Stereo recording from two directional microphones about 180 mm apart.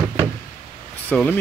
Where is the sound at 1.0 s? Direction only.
10° left (ahead or behind).